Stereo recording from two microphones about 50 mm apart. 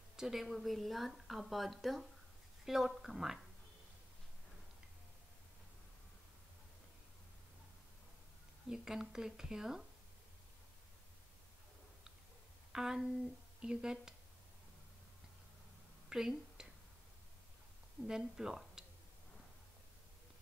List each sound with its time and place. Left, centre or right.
0.1 s a woman's voice: centre
8.6 s a woman's voice: centre
12.7 s a woman's voice: centre
16.1 s speech: centre
18.0 s speech: centre